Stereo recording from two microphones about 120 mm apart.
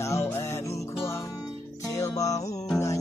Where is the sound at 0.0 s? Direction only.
20° left (ahead or behind).